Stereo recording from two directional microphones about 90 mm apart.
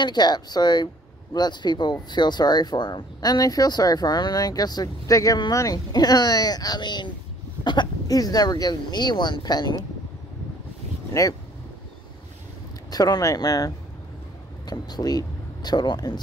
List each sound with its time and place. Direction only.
0.0 s speech: 50° left (ahead or behind)
8.1 s speech: 45° left (ahead or behind)
11.1 s speech: 40° left (ahead or behind)
12.9 s speech: 45° left (ahead or behind)